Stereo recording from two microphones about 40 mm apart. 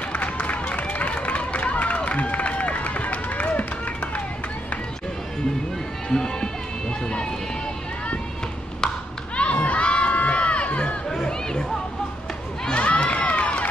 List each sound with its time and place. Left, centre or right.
0.1 s run: left
6.0 s music: centre
9.4 s crowd: left
11.1 s chatter: centre
12.6 s crowd: left